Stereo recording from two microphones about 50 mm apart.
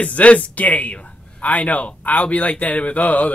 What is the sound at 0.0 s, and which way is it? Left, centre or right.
Speech, left.